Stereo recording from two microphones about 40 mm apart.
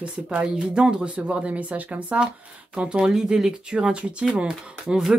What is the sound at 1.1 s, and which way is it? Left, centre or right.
Speech, right.